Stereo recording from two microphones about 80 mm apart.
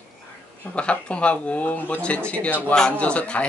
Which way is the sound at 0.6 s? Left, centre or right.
Centre.